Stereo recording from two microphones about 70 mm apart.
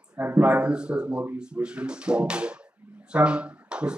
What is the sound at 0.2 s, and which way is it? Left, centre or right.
Speech, right.